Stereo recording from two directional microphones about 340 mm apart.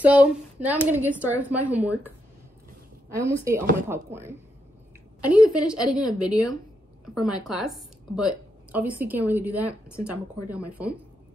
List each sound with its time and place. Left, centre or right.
0.0 s a woman's voice: centre